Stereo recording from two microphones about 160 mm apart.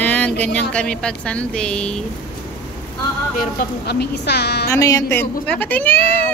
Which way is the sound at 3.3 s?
90° left.